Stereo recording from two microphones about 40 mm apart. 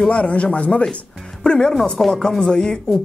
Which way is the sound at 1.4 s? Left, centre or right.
Centre.